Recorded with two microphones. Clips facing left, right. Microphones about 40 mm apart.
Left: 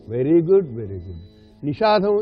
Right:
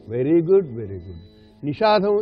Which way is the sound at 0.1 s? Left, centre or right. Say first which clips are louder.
Left 1 dB; centre.